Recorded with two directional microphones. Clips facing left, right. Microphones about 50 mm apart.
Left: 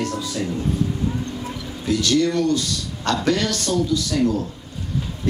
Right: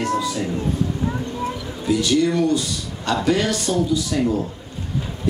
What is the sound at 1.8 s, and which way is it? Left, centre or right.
A man's voice, centre.